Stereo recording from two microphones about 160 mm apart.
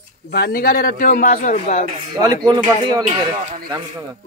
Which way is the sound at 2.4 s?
25° right (ahead or behind).